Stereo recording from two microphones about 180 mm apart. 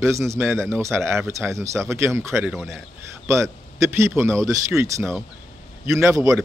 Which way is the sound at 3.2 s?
15° right (ahead or behind).